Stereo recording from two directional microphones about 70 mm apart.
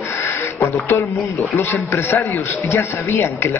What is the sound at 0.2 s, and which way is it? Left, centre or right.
Music, left.